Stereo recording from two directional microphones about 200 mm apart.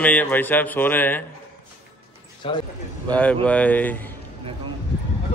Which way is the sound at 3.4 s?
5° left (ahead or behind).